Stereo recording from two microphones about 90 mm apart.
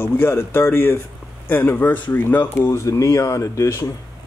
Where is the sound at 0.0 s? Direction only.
25° left (ahead or behind).